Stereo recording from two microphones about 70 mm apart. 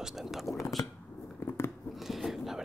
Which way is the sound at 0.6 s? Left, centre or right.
Left.